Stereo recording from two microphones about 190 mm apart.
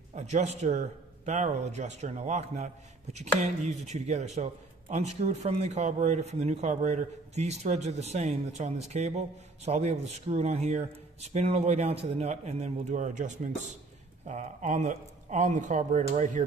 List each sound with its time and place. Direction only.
0.1 s speech: 35° right (ahead or behind)